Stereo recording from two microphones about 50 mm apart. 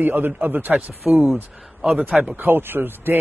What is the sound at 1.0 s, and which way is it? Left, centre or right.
Speech, right.